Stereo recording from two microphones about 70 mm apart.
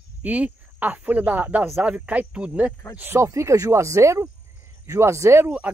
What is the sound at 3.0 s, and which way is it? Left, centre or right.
Speech, right.